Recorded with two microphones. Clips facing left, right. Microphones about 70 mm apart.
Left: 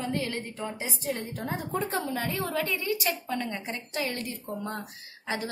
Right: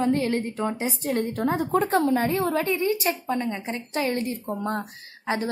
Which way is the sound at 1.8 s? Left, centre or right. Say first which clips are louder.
Right 9 dB; right.